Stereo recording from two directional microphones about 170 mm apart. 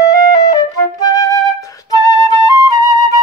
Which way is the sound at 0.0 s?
20° left (ahead or behind).